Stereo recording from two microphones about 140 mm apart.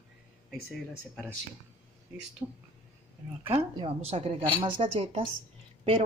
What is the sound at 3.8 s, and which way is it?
A woman's voice, 45° right (ahead or behind).